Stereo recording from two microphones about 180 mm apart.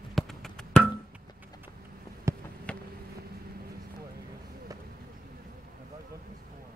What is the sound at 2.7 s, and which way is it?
Vehicle, 5° left (ahead or behind).